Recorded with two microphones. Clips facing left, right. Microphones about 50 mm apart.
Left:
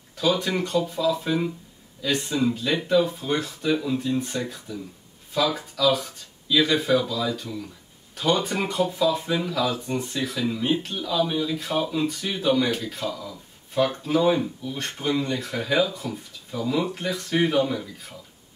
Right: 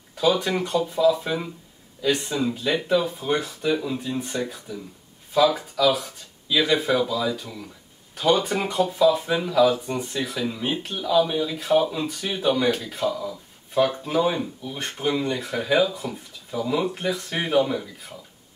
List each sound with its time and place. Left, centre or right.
0.4 s speech: centre
10.1 s speech: centre
13.1 s speech: centre